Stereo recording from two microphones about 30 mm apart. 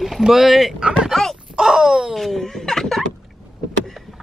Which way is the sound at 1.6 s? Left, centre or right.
Right.